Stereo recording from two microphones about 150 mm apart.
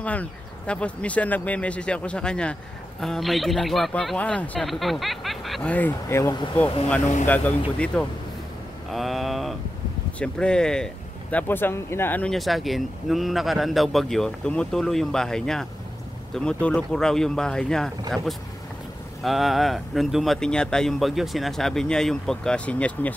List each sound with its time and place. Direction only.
0.0 s speech: 10° left (ahead or behind)
8.9 s mantra: centre (ahead or behind)
10.1 s speech: 5° left (ahead or behind)
19.2 s speech: centre (ahead or behind)